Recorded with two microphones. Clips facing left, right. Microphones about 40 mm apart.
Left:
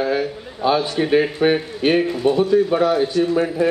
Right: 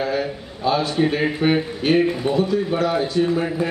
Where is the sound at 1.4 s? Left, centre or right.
Left.